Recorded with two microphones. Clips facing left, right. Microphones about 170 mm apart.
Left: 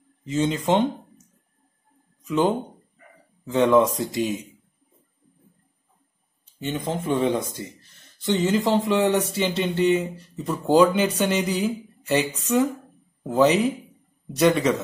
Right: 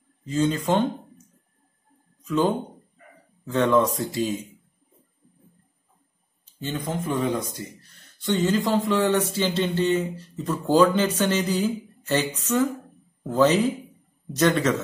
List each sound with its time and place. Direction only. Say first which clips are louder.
0.2 s speech: even; 20° left (ahead or behind)
2.2 s speech: left 1 dB; 15° left (ahead or behind)
6.6 s speech: left 2 dB; 20° left (ahead or behind)